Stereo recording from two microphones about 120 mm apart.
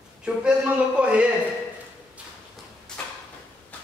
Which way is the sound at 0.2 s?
10° right (ahead or behind).